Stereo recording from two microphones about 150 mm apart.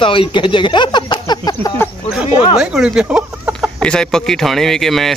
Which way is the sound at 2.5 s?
5° right (ahead or behind).